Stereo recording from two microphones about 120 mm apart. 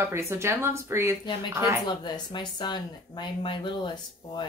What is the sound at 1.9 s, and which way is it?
Speech, 40° left (ahead or behind).